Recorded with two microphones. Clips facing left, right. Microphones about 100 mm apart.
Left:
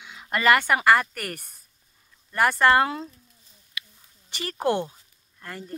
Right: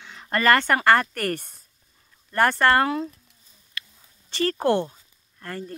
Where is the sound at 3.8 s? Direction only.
15° left (ahead or behind).